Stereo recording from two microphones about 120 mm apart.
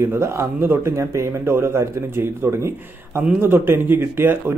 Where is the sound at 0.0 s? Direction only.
25° right (ahead or behind).